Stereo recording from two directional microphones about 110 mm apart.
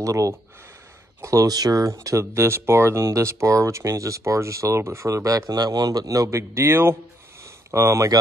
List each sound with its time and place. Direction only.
0.0 s speech: 30° right (ahead or behind)